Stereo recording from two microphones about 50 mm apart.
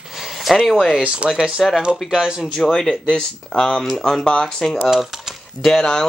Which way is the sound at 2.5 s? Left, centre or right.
Centre.